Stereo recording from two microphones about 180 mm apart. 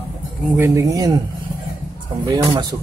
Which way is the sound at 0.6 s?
15° right (ahead or behind).